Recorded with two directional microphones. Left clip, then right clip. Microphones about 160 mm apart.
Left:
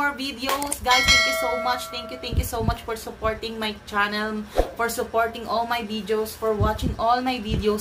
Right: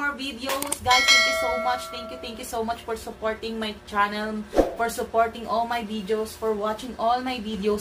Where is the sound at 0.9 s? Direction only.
Centre (ahead or behind).